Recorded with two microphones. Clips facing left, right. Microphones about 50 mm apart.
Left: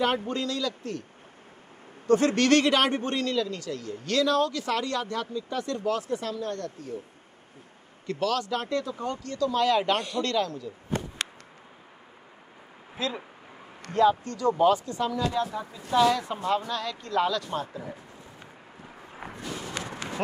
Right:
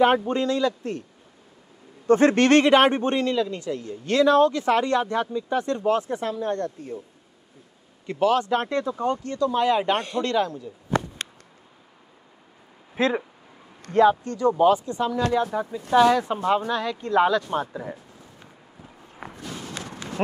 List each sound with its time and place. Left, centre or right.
0.3 s speech: right
2.0 s speech: right
8.1 s speech: right
12.9 s speech: right
13.9 s speech: right
19.7 s run: left